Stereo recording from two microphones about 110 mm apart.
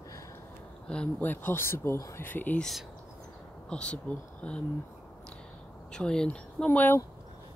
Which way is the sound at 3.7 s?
10° left (ahead or behind).